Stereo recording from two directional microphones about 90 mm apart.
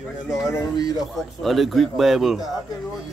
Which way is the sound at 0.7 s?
50° left (ahead or behind).